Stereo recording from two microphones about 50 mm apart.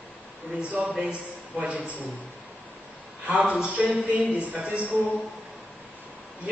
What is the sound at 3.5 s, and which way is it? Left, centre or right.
A woman's voice, right.